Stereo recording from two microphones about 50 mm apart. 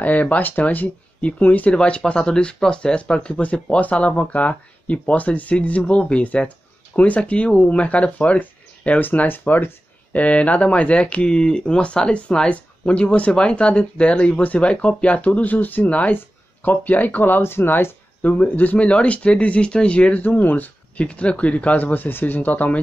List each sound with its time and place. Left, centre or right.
0.0 s speech: left
9.3 s speech: left
10.1 s speech: left
18.3 s speech: left
21.0 s speech: left